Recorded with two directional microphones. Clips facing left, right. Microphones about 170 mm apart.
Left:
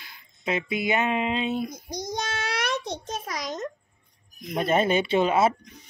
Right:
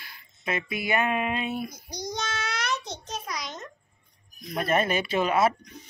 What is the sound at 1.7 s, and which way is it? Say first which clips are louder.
Child singing: left 3 dB; 50° left (ahead or behind).